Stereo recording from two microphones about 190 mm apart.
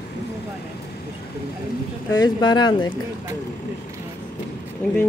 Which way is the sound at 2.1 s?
20° left (ahead or behind).